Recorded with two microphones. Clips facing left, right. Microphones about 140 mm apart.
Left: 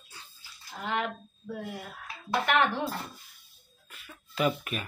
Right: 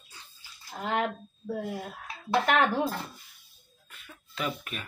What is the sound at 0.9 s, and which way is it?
Speech, 40° right (ahead or behind).